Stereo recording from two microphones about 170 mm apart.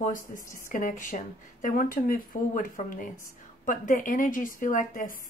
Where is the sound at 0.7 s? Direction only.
50° left (ahead or behind).